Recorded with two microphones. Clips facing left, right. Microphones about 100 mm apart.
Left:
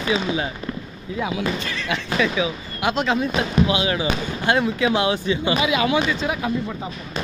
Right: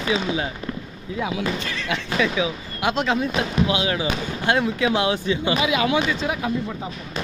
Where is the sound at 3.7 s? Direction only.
15° left (ahead or behind).